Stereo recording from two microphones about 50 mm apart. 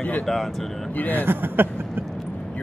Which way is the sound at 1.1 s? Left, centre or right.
Right.